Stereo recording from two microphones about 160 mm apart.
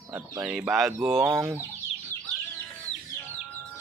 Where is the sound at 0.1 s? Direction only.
10° right (ahead or behind).